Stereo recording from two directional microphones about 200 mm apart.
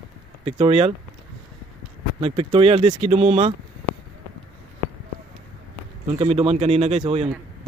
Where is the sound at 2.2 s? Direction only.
25° right (ahead or behind).